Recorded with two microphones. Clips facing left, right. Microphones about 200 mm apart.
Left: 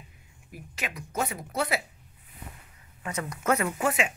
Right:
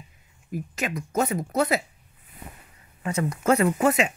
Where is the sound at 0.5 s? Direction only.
45° right (ahead or behind).